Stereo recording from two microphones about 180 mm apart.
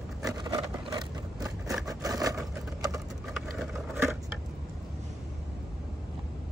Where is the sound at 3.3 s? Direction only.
Centre (ahead or behind).